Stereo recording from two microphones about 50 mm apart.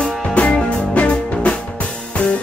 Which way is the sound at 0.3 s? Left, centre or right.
Left.